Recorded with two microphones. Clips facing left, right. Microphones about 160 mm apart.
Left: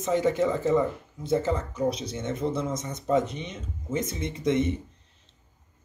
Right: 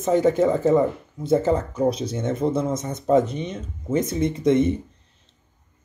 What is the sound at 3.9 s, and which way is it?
Speech, 40° right (ahead or behind).